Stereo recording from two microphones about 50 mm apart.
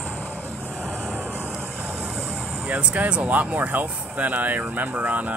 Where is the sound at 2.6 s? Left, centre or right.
Right.